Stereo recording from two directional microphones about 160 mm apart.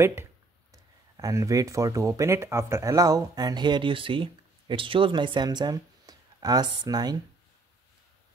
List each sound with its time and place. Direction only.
0.0 s speech: 20° right (ahead or behind)